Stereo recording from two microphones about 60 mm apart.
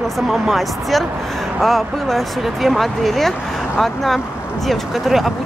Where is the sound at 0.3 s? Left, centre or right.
Centre.